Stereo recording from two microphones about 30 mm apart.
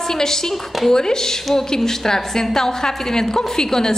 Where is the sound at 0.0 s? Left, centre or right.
Centre.